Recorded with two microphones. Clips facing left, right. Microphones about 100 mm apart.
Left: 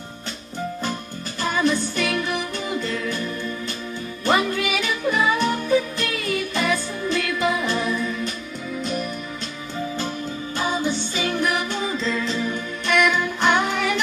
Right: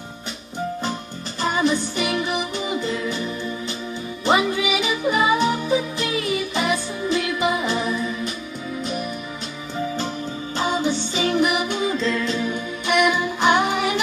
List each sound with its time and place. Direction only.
1.4 s music: 15° right (ahead or behind)
10.6 s music: 20° right (ahead or behind)
11.9 s music: centre (ahead or behind); by 13.9 s 15° right (ahead or behind)